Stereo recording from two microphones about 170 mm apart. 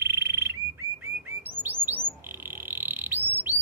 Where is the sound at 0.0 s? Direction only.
15° right (ahead or behind).